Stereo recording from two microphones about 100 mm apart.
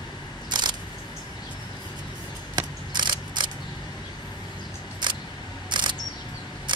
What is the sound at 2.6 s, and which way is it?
Mechanisms, 50° right (ahead or behind).